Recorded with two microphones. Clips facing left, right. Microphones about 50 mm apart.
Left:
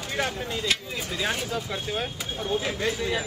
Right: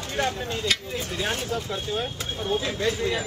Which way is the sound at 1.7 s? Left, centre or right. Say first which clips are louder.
Right 1 dB; left.